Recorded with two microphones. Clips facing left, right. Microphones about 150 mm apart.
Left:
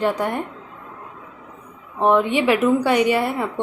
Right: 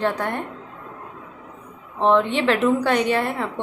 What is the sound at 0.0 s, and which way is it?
Speech, 10° left (ahead or behind).